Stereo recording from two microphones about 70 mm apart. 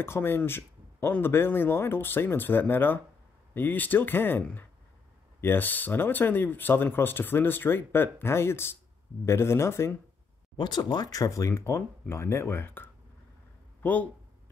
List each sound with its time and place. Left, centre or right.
0.0 s speech: left
0.5 s a sound: left
1.2 s speech: left
10.6 s speech: left